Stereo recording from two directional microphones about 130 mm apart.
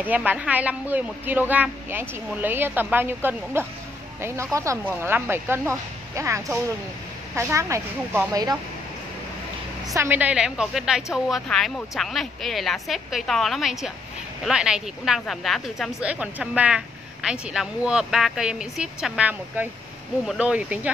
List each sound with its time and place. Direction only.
0.0 s speech: 15° right (ahead or behind); by 8.5 s 30° right (ahead or behind)
9.9 s a woman's voice: 15° right (ahead or behind); by 16.1 s centre (ahead or behind)
16.1 s speech: 10° right (ahead or behind)